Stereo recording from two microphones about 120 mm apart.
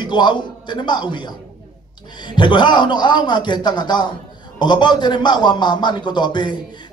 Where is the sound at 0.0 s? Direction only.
40° left (ahead or behind).